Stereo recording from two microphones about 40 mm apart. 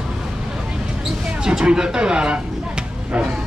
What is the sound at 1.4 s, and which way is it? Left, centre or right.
Speech, centre.